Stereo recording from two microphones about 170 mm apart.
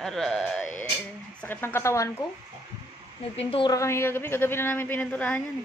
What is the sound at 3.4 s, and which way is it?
Speech, 30° left (ahead or behind).